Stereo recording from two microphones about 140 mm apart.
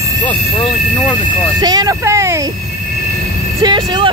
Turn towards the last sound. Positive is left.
turn(degrees=-35)  # may be behind; listen again after turning